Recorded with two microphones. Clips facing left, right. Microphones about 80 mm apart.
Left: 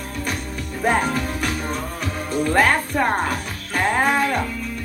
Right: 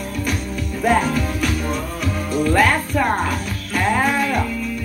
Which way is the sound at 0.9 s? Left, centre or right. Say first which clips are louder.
Right 2 dB; left.